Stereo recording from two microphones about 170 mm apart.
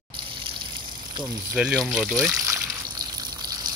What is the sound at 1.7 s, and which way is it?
Speech, centre (ahead or behind).